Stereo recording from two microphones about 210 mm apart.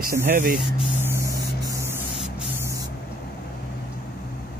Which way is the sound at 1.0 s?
10° right (ahead or behind).